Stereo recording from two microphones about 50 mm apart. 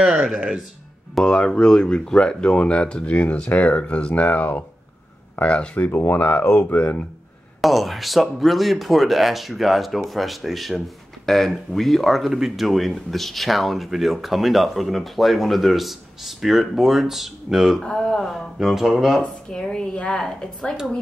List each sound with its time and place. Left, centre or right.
0.0 s speech: centre
1.2 s speech: centre; by 7.1 s left
7.6 s speech: centre
17.8 s speech: centre
18.6 s speech: centre
19.5 s speech: centre